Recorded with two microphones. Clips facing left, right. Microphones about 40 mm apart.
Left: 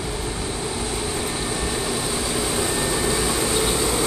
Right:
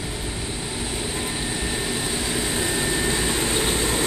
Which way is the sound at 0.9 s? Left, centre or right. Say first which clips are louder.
Left 2 dB; centre.